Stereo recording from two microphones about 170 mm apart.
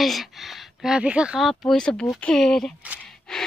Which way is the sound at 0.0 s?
Centre (ahead or behind).